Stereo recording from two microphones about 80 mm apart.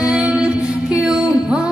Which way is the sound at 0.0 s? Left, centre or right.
Centre.